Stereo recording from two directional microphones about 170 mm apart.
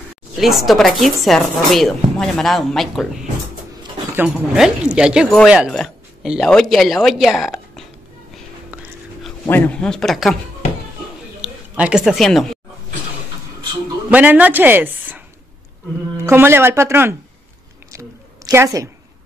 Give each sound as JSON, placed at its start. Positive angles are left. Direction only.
{"t": 0.4, "sound": "speech", "side_deg": 0}
{"t": 4.3, "sound": "speech", "side_deg": -5}
{"t": 9.5, "sound": "speech", "side_deg": 10}
{"t": 11.4, "sound": "speech", "side_deg": -5}
{"t": 14.1, "sound": "a woman's voice", "side_deg": -10}
{"t": 17.9, "sound": "a sound", "side_deg": -15}